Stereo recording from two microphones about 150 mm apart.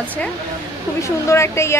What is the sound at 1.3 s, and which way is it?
Speech, 15° left (ahead or behind).